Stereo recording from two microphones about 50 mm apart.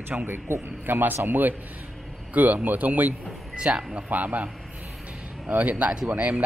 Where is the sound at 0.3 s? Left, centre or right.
Right.